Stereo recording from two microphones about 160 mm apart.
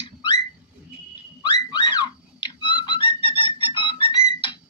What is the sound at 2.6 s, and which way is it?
Fowl, 30° left (ahead or behind).